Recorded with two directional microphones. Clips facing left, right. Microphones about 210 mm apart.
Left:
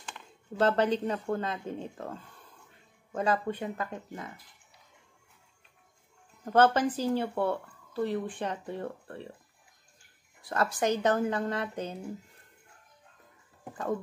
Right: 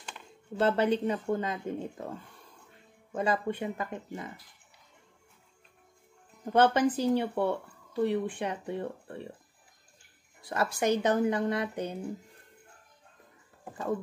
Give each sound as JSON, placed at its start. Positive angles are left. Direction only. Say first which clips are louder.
{"t": 0.6, "sound": "speech", "louder": "even", "side_deg": -10}
{"t": 3.2, "sound": "speech", "louder": "even", "side_deg": -10}
{"t": 6.5, "sound": "speech", "louder": "even", "side_deg": -15}
{"t": 10.5, "sound": "speech", "louder": "right 1 dB", "side_deg": -10}